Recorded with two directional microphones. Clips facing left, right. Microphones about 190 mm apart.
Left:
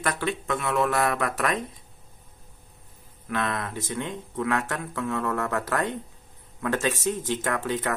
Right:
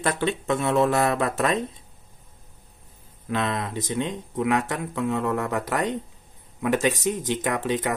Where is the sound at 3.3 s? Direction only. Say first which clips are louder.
Right 2 dB; 20° right (ahead or behind).